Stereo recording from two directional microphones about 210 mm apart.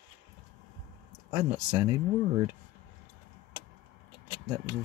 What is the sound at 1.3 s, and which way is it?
Speech, 20° right (ahead or behind).